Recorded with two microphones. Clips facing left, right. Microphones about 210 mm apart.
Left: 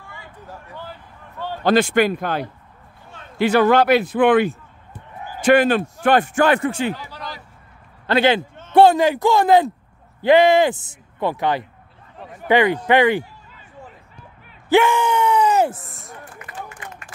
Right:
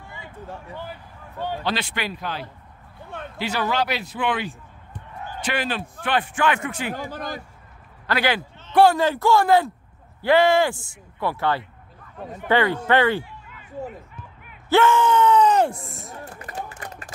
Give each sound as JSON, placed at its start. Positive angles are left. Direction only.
{"t": 0.1, "sound": "a sound", "side_deg": -25}
{"t": 1.6, "sound": "speech", "side_deg": 50}
{"t": 4.9, "sound": "basketball bounce", "side_deg": 5}
{"t": 5.4, "sound": "a man's voice", "side_deg": 50}
{"t": 7.0, "sound": "speech", "side_deg": -50}
{"t": 8.1, "sound": "speech", "side_deg": 25}
{"t": 14.7, "sound": "gasp", "side_deg": 15}
{"t": 16.3, "sound": "run", "side_deg": -35}